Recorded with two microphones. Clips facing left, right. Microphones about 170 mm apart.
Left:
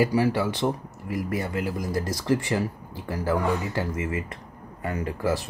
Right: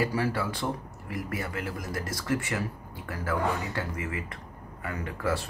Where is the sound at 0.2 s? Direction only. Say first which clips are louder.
Left 6 dB; 30° left (ahead or behind).